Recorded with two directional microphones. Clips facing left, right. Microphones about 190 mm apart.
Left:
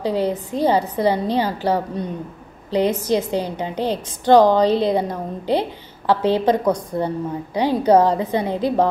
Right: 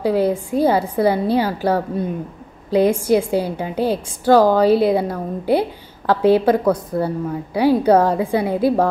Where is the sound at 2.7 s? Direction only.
10° right (ahead or behind).